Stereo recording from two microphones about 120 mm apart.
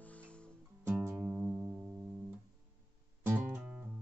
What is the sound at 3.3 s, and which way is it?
Music, 20° right (ahead or behind).